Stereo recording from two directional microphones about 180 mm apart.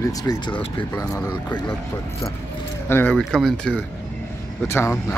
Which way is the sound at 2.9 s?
10° left (ahead or behind).